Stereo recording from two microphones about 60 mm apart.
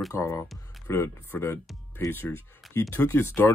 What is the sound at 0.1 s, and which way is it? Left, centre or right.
Speech, left.